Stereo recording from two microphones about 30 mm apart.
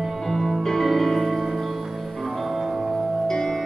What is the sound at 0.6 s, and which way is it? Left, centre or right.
Music, centre.